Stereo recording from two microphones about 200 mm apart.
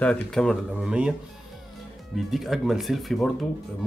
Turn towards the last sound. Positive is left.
turn(degrees=0)  # may be behind; listen again after turning